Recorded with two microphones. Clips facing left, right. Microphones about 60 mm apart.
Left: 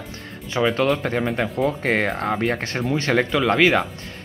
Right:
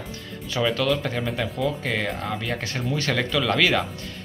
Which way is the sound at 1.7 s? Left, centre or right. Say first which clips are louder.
Left 5 dB; left.